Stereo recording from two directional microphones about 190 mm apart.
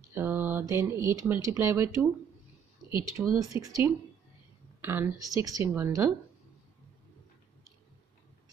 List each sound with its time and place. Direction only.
0.1 s speech: 10° right (ahead or behind)
3.2 s a woman's voice: 15° right (ahead or behind)